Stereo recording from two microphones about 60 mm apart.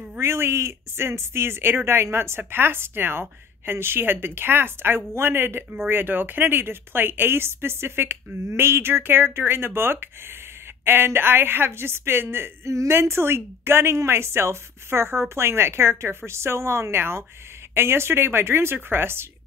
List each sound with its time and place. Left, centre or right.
0.2 s speech: right
12.7 s a woman's voice: right